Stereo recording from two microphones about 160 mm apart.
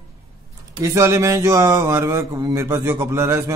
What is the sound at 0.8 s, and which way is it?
Speech, 20° right (ahead or behind).